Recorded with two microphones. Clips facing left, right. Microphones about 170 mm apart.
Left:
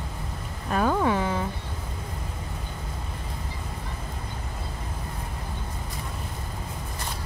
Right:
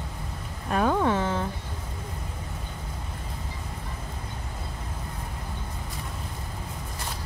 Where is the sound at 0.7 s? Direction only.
Centre (ahead or behind).